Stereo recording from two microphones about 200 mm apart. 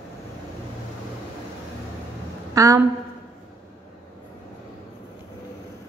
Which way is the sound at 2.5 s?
15° right (ahead or behind).